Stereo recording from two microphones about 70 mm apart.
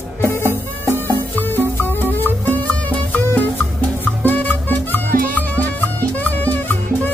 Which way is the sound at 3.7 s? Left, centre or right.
Left.